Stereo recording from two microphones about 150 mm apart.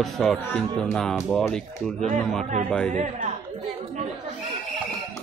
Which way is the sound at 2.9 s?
55° right (ahead or behind).